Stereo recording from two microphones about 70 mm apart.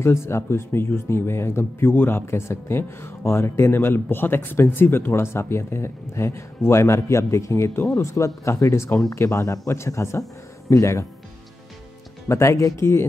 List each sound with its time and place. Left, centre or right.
0.0 s speech: left
12.3 s speech: left